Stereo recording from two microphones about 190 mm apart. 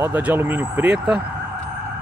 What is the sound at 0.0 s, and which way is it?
Speech, 10° right (ahead or behind).